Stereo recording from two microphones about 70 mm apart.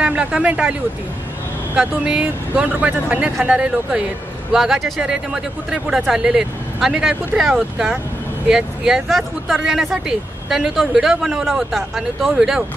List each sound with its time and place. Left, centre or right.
0.0 s speech: centre
1.8 s a man's voice: centre